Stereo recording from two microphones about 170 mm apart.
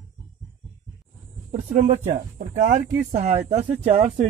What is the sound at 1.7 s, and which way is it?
Speech, 40° right (ahead or behind).